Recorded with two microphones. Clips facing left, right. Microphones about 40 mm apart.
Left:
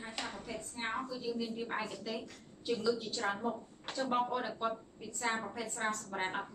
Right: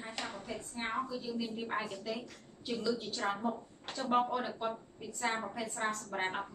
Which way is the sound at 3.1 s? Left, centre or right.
Centre.